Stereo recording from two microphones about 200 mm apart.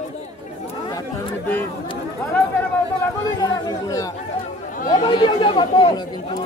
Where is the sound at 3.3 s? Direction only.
20° left (ahead or behind).